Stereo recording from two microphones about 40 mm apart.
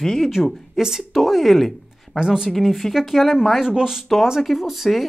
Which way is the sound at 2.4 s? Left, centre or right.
Centre.